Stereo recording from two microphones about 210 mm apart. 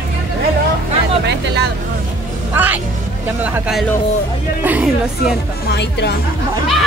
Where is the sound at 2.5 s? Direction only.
10° right (ahead or behind).